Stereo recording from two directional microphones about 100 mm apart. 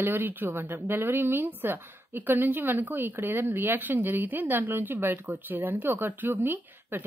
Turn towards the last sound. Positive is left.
turn(degrees=-20)  # may be behind; listen again after turning